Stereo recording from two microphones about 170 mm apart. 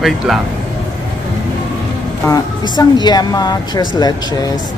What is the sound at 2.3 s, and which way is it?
A woman's voice, 25° left (ahead or behind).